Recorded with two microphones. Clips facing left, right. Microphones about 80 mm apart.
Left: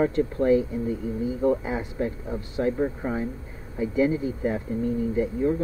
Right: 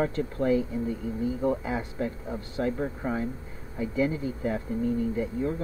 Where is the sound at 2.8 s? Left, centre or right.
Centre.